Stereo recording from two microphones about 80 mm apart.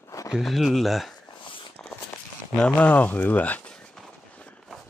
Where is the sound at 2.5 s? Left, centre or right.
Centre.